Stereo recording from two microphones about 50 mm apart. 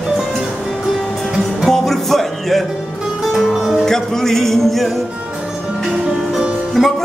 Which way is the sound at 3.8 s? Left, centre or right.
Centre.